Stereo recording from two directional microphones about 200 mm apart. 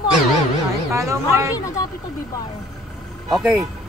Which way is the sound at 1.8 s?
20° left (ahead or behind).